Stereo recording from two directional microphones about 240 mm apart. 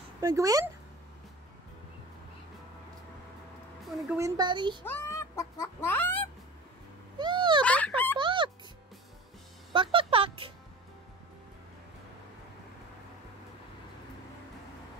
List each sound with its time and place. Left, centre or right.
0.2 s speech: centre
4.1 s speech: centre
4.8 s chicken: centre
7.2 s speech: centre
7.6 s a sound: centre
8.2 s music: centre
9.7 s music: right